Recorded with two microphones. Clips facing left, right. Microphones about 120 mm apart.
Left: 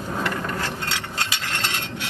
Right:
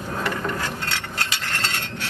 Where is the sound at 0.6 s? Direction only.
20° left (ahead or behind).